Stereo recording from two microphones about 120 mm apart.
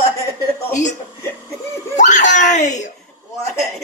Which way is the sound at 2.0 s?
90° left.